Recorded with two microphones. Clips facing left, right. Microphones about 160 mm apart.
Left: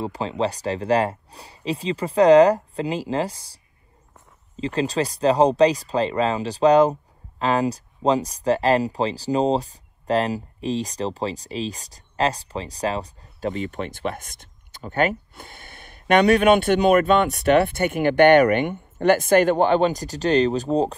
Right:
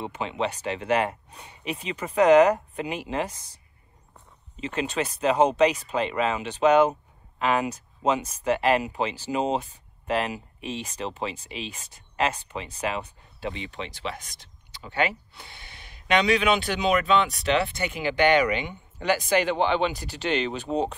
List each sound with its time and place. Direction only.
0.0 s speech: 35° left (ahead or behind)
4.6 s speech: 35° left (ahead or behind)